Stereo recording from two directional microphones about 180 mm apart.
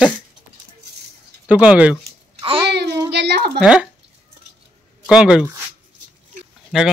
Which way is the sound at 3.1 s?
65° right (ahead or behind).